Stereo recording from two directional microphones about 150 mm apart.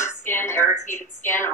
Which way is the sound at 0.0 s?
15° left (ahead or behind).